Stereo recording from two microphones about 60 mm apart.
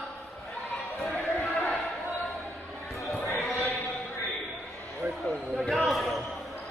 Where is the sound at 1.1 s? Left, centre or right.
Left.